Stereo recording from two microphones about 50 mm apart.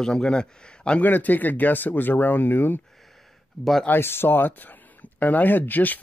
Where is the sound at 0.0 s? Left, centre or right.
Centre.